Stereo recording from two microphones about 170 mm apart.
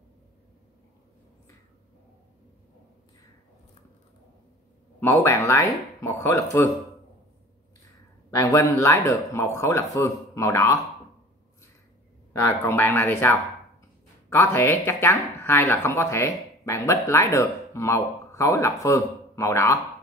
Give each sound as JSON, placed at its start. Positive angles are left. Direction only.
{"t": 5.0, "sound": "speech", "side_deg": 15}
{"t": 8.3, "sound": "speech", "side_deg": 20}
{"t": 12.3, "sound": "speech", "side_deg": 15}